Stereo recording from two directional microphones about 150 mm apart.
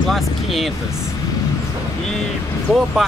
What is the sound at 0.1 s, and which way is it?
Speech, centre (ahead or behind).